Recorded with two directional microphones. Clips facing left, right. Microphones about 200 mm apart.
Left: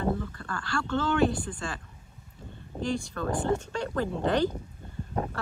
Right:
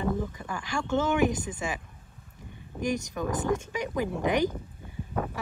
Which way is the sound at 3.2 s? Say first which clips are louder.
Even; 15° right (ahead or behind).